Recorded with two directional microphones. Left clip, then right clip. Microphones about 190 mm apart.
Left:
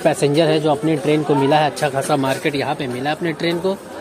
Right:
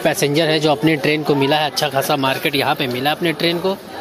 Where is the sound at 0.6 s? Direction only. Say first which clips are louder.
Right 2 dB; 15° right (ahead or behind).